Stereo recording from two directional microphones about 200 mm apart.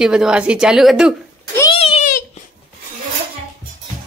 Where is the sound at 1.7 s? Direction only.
30° left (ahead or behind).